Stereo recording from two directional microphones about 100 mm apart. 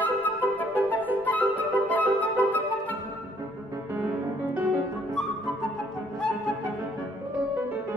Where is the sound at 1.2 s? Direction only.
15° left (ahead or behind).